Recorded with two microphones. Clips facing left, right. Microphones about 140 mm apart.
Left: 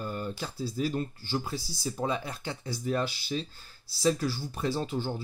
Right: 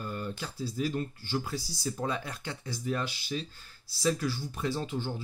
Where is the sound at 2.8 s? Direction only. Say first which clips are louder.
Left 3 dB; 35° left (ahead or behind).